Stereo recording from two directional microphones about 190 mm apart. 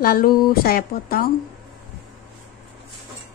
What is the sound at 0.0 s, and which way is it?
Speech, 50° left (ahead or behind).